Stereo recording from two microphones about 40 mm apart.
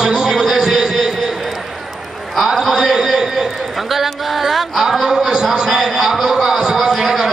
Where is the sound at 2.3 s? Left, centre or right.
Centre.